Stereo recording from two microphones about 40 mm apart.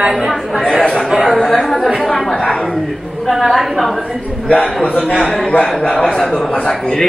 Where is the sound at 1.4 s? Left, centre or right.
Centre.